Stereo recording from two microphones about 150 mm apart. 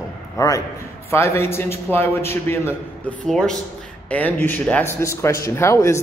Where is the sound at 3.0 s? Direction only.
5° left (ahead or behind).